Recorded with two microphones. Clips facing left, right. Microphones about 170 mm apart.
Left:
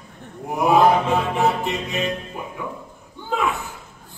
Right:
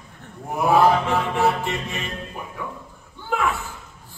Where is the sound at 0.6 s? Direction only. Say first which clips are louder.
Left 1 dB; 20° left (ahead or behind).